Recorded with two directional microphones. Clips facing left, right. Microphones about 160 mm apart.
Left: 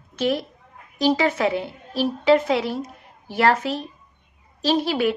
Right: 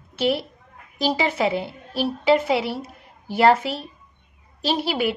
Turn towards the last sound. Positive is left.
turn(degrees=-10)  # may be behind; listen again after turning